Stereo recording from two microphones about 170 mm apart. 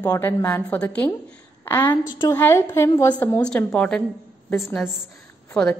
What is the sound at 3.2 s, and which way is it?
A woman's voice, 10° left (ahead or behind).